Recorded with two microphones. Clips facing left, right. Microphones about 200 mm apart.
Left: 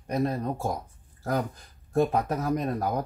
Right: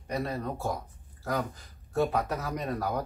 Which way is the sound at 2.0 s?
50° left (ahead or behind).